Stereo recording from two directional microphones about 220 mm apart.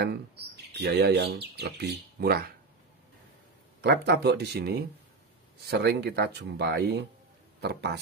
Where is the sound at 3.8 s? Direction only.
50° right (ahead or behind).